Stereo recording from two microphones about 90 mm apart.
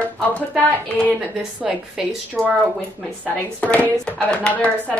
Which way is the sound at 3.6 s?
15° left (ahead or behind).